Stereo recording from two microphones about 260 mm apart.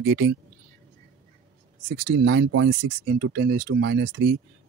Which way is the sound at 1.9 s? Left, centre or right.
Right.